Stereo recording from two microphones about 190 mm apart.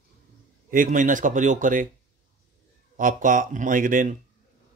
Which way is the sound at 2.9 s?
45° right (ahead or behind).